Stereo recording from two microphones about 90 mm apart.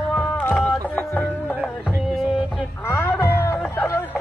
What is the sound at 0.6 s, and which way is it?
Music, 20° left (ahead or behind).